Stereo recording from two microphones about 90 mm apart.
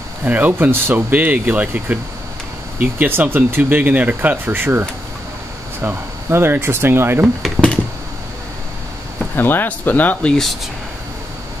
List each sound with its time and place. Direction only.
0.2 s speech: 20° right (ahead or behind)
7.4 s computer keyboard: 10° left (ahead or behind)
9.3 s speech: 25° left (ahead or behind)
10.3 s speech: centre (ahead or behind)